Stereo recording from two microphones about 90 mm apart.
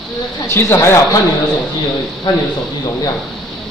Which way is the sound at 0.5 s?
25° left (ahead or behind).